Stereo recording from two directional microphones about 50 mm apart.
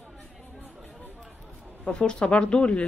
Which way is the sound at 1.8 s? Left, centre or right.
Centre.